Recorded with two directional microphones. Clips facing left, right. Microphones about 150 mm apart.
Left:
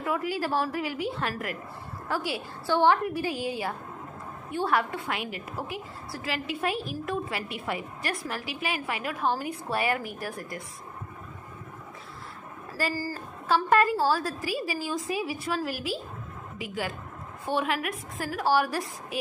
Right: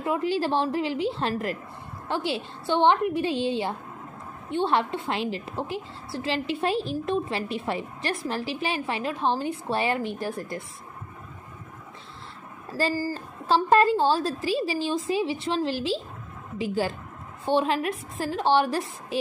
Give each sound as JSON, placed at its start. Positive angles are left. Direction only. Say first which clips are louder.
{"t": 0.0, "sound": "a woman's voice", "louder": "right 4 dB", "side_deg": -25}
{"t": 12.9, "sound": "a woman's voice", "louder": "right 4 dB", "side_deg": -20}